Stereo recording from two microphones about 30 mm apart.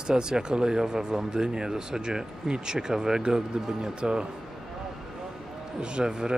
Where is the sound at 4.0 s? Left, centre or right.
Right.